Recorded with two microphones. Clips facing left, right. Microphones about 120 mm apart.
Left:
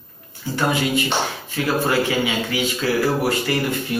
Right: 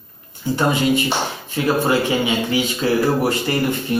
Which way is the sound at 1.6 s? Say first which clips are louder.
Right 2 dB; 20° right (ahead or behind).